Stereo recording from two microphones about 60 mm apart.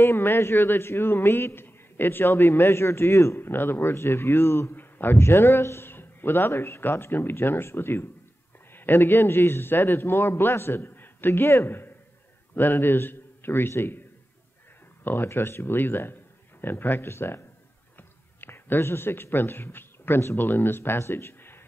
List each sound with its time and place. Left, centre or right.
0.0 s speech: left
3.3 s a man's voice: left
4.7 s a man's voice: left
15.0 s a man's voice: left